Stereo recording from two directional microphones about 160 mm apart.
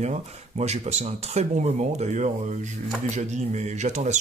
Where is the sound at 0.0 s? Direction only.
45° right (ahead or behind).